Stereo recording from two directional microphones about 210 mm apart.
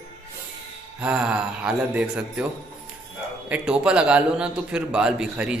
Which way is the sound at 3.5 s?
5° right (ahead or behind).